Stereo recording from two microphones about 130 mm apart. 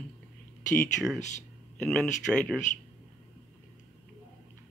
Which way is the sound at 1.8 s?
5° left (ahead or behind).